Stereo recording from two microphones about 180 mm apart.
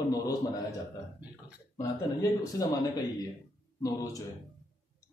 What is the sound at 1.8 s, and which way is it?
Speech, 20° left (ahead or behind).